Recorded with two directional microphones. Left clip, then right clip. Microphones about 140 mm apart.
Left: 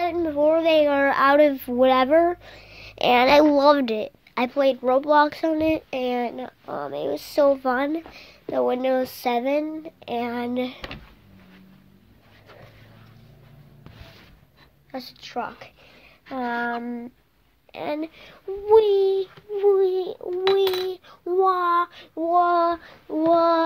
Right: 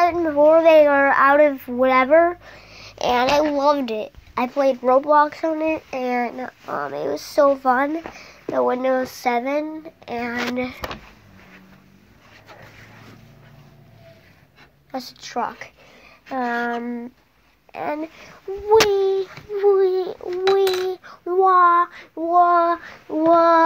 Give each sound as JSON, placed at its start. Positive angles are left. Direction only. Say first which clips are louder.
{"t": 0.0, "sound": "a sound", "louder": "right 6 dB", "side_deg": 10}
{"t": 0.5, "sound": "a sound", "louder": "right 6 dB", "side_deg": 20}
{"t": 1.0, "sound": "speech", "louder": "right 3 dB", "side_deg": 45}
{"t": 2.8, "sound": "a woman's voice", "louder": "left 1 dB", "side_deg": 40}
{"t": 4.6, "sound": "speech", "louder": "right 3 dB", "side_deg": 15}
{"t": 5.3, "sound": "speech", "louder": "even", "side_deg": 40}
{"t": 6.0, "sound": "speech", "louder": "right 6 dB", "side_deg": 20}
{"t": 7.2, "sound": "speech", "louder": "right 3 dB", "side_deg": 20}
{"t": 14.9, "sound": "a woman's voice", "louder": "right 4 dB", "side_deg": 0}
{"t": 16.3, "sound": "speech", "louder": "right 3 dB", "side_deg": 25}
{"t": 17.7, "sound": "speech", "louder": "right 2 dB", "side_deg": 35}
{"t": 18.7, "sound": "a woman's voice", "louder": "right 1 dB", "side_deg": 25}